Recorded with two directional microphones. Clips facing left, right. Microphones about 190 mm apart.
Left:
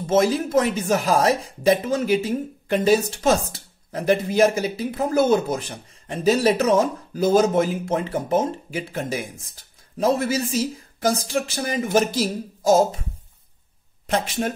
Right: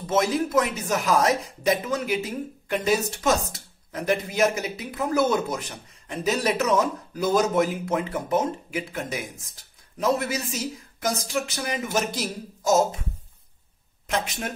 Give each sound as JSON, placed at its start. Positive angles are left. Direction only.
{"t": 0.0, "sound": "speech", "side_deg": 30}
{"t": 14.0, "sound": "speech", "side_deg": 30}